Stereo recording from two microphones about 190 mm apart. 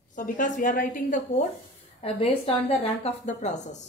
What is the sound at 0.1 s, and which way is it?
A woman's voice, 45° left (ahead or behind).